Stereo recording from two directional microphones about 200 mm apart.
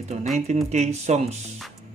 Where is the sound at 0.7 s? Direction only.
35° right (ahead or behind).